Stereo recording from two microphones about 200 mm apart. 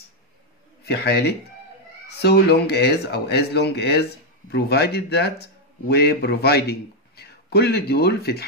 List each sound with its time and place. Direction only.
0.8 s a man's voice: 55° left (ahead or behind)